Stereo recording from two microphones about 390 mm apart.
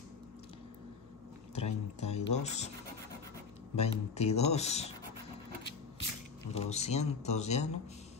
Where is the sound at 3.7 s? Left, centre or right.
Centre.